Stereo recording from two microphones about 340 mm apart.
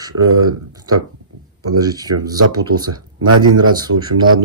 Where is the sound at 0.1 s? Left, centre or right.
Right.